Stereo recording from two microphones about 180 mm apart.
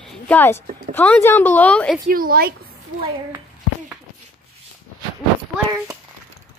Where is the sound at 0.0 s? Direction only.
10° left (ahead or behind).